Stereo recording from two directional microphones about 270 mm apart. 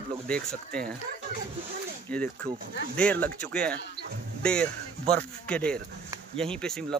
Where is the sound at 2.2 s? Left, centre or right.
Right.